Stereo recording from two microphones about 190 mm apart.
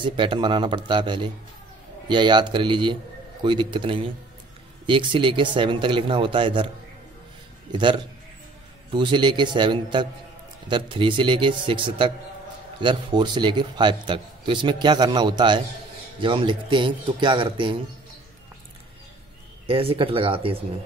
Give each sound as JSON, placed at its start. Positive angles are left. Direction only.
{"t": 0.0, "sound": "a man's voice", "side_deg": -25}
{"t": 7.7, "sound": "a man's voice", "side_deg": -25}
{"t": 19.6, "sound": "a man's voice", "side_deg": -30}